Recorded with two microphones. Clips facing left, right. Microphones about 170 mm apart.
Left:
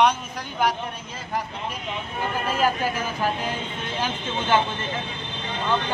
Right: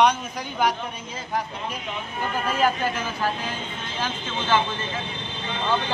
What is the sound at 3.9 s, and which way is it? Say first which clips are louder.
Speech: left 1 dB; 15° left (ahead or behind).